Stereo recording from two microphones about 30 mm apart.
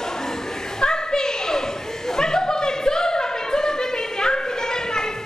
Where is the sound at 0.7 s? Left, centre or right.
Left.